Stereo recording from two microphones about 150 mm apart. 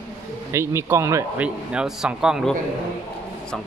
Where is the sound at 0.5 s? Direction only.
20° right (ahead or behind).